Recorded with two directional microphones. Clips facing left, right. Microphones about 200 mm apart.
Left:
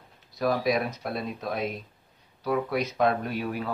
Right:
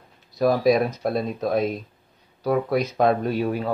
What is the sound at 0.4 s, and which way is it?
Speech, 35° right (ahead or behind).